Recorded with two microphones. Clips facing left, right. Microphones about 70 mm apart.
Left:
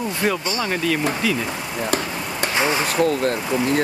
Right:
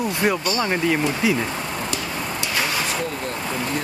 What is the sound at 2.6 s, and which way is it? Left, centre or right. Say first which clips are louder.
Vehicle: left 5 dB; left.